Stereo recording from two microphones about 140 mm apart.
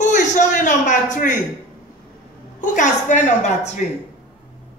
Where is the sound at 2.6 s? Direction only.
60° left (ahead or behind).